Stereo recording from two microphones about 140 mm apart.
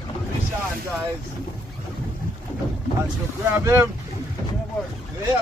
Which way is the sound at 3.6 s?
20° right (ahead or behind).